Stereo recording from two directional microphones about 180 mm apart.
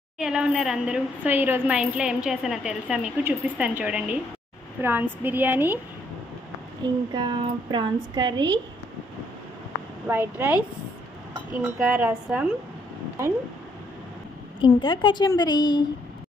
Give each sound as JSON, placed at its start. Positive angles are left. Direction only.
{"t": 0.2, "sound": "a woman's voice", "side_deg": -5}
{"t": 6.8, "sound": "speech", "side_deg": -25}
{"t": 10.0, "sound": "speech", "side_deg": -10}
{"t": 11.8, "sound": "speech", "side_deg": -10}
{"t": 14.6, "sound": "a woman's voice", "side_deg": 25}